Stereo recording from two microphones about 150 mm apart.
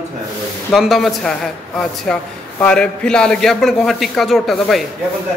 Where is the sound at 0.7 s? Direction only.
Centre (ahead or behind).